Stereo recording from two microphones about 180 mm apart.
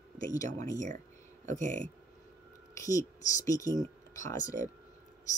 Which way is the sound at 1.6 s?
45° right (ahead or behind).